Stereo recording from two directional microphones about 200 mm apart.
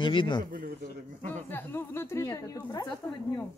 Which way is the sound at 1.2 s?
10° left (ahead or behind).